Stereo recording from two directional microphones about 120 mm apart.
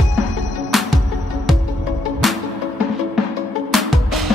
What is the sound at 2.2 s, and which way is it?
Music, centre (ahead or behind).